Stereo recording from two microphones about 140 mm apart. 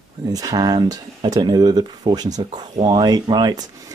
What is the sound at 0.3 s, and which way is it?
Speech, 25° right (ahead or behind).